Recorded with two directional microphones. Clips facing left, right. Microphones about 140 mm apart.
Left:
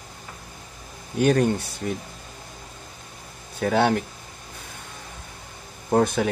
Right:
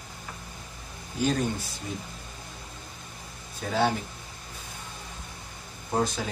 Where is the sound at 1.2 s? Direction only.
65° left (ahead or behind).